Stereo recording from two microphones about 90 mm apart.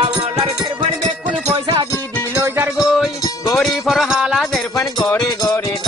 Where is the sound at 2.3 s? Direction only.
25° right (ahead or behind).